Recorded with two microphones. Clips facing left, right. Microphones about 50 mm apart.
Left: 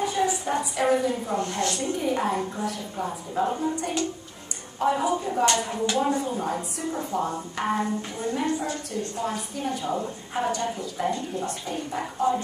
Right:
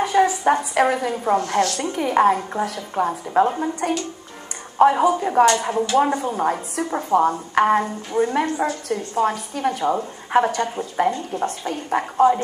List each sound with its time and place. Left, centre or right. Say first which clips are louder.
0.0 s a woman's voice: right 8 dB; right